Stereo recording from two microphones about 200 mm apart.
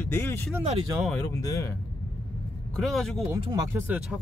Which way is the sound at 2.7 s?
Centre (ahead or behind).